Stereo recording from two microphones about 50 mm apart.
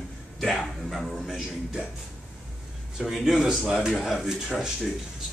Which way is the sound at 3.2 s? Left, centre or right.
Centre.